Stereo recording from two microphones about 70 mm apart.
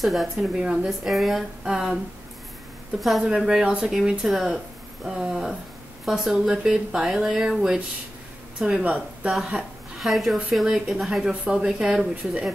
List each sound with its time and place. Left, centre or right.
0.0 s a woman's voice: centre
3.0 s a woman's voice: centre
9.9 s a woman's voice: centre